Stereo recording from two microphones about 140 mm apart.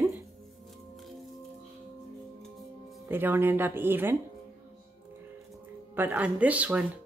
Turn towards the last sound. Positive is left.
turn(degrees=-10)  # may be behind; listen again after turning